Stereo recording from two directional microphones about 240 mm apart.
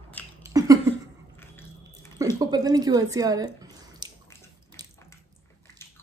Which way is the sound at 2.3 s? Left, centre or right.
Centre.